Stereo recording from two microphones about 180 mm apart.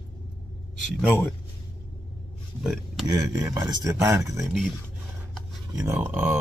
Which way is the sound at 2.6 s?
5° right (ahead or behind).